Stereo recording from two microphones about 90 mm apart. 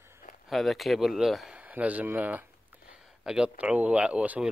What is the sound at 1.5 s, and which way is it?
Speech, 15° right (ahead or behind).